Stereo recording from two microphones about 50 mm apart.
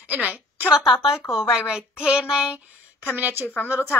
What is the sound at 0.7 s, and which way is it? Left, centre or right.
Speech, centre.